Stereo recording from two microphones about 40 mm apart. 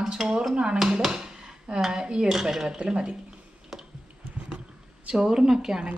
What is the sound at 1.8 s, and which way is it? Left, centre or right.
Speech, centre.